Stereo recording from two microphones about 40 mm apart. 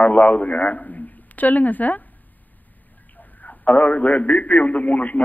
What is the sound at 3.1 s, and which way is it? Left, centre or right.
A man's voice, left.